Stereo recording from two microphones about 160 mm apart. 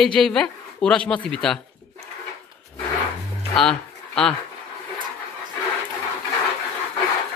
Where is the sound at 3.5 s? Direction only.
5° left (ahead or behind).